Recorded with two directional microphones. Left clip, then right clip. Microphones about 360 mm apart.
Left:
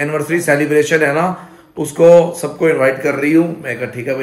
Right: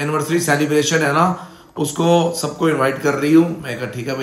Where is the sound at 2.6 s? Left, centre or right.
Centre.